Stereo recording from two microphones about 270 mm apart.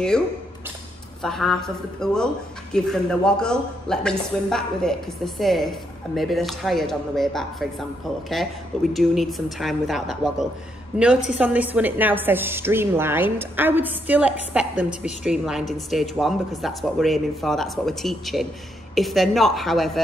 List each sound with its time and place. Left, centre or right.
1.2 s a woman's voice: centre
8.9 s a woman's voice: centre